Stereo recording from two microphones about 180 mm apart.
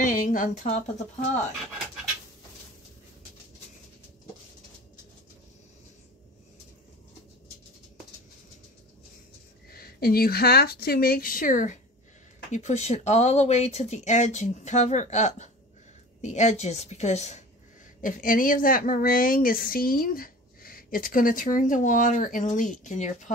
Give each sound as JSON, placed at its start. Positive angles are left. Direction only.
{"t": 0.0, "sound": "a sound", "side_deg": 50}
{"t": 9.7, "sound": "speech", "side_deg": 55}
{"t": 18.0, "sound": "speech", "side_deg": 50}